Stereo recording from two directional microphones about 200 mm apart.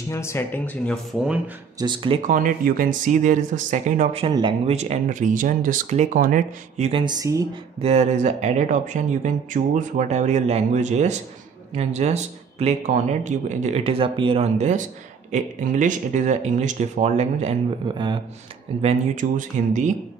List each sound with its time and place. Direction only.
0.1 s speech: 15° left (ahead or behind)
1.8 s speech: 25° right (ahead or behind)
2.2 s speech: 45° right (ahead or behind)
4.3 s speech: 25° right (ahead or behind); by 6.9 s 40° right (ahead or behind)
6.9 s speech: 20° right (ahead or behind)
7.8 s speech: 35° right (ahead or behind)
18.8 s speech: 35° right (ahead or behind)